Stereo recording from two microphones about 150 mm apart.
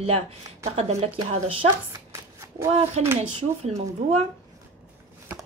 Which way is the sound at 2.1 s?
20° right (ahead or behind).